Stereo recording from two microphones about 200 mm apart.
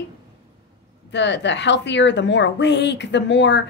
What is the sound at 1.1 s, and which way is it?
A woman's voice, 60° left (ahead or behind).